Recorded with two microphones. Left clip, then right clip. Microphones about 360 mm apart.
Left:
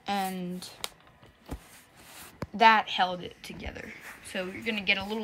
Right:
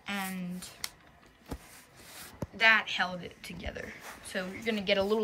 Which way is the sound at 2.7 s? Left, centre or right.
Centre.